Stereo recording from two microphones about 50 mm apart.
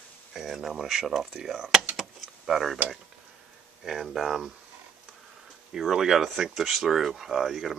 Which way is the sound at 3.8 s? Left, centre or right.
Centre.